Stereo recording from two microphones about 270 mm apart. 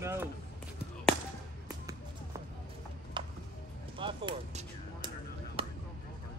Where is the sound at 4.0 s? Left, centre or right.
Centre.